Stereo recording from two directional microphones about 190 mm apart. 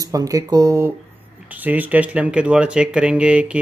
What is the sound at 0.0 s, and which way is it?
Speech, 20° right (ahead or behind).